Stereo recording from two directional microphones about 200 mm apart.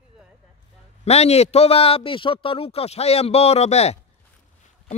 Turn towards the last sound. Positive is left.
turn(degrees=30)  # may be behind; listen again after turning